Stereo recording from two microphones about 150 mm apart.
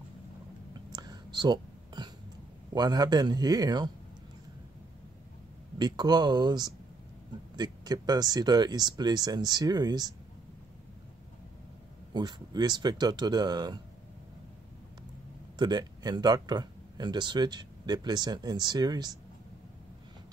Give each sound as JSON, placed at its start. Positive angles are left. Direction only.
{"t": 0.9, "sound": "whispering", "side_deg": -30}
{"t": 2.7, "sound": "speech", "side_deg": -25}
{"t": 5.8, "sound": "speech", "side_deg": -30}
{"t": 12.1, "sound": "speech", "side_deg": -30}
{"t": 15.5, "sound": "speech", "side_deg": -30}